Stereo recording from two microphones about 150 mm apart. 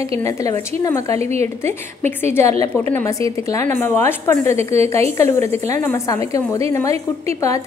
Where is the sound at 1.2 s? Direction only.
45° right (ahead or behind).